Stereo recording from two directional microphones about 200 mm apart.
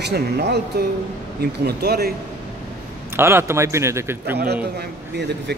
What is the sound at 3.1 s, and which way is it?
Speech, 10° right (ahead or behind).